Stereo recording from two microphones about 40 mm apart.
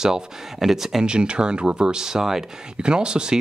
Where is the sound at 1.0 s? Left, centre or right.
Right.